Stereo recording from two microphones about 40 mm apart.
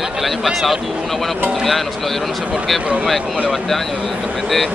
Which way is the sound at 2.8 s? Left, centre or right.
Right.